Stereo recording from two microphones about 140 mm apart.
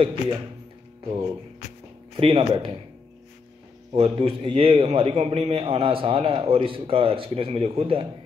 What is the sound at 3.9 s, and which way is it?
A man's voice, 40° right (ahead or behind).